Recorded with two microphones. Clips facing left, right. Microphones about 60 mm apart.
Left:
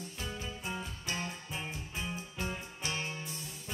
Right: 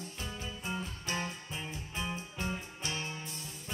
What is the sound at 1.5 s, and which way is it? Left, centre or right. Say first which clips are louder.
Music: left 1 dB; left.